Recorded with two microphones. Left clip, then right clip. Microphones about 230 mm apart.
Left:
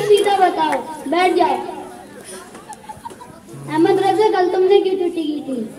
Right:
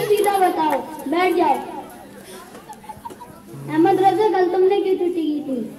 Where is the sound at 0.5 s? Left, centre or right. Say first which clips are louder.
Left 2 dB; left.